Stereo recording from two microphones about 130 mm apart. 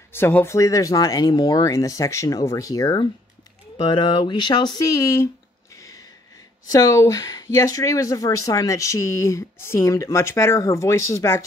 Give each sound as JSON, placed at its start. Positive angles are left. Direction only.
{"t": 0.1, "sound": "speech", "side_deg": 15}
{"t": 4.3, "sound": "speech", "side_deg": 35}
{"t": 5.8, "sound": "a sound", "side_deg": 25}
{"t": 6.7, "sound": "speech", "side_deg": 25}